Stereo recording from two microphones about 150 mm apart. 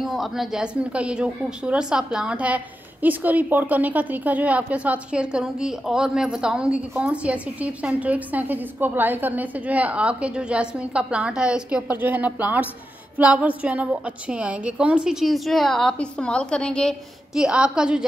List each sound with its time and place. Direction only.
0.0 s a woman's voice: centre (ahead or behind)